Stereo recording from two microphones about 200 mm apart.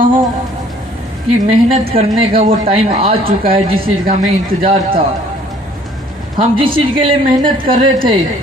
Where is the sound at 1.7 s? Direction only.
30° right (ahead or behind).